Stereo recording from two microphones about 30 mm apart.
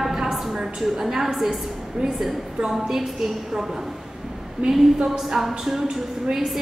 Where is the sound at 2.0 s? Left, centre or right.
Right.